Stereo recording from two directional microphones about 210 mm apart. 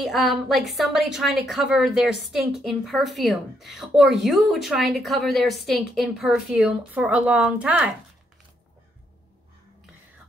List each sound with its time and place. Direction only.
0.0 s a woman's voice: centre (ahead or behind)